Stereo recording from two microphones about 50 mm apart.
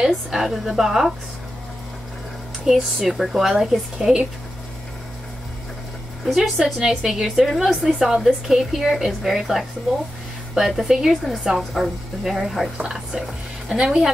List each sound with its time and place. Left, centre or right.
0.0 s a woman's voice: centre
2.6 s a woman's voice: centre
4.0 s a woman's voice: centre
6.2 s a woman's voice: centre
10.9 s a woman's voice: centre
12.7 s a woman's voice: centre